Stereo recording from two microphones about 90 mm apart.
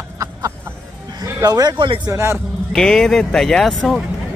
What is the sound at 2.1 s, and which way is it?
Speech, 30° right (ahead or behind).